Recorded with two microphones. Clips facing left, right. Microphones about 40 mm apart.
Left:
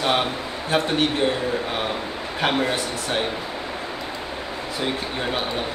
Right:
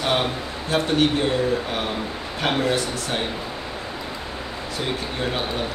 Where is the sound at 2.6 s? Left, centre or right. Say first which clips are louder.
Right 1 dB; centre.